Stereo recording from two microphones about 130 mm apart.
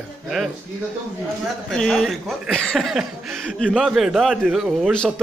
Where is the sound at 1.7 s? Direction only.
5° left (ahead or behind).